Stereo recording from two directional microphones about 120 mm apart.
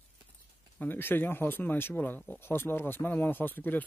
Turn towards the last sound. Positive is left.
turn(degrees=15)  # may be behind; listen again after turning